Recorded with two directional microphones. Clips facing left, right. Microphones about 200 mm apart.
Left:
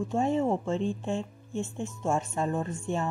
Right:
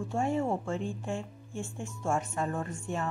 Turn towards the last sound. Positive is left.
turn(degrees=25)  # may be behind; listen again after turning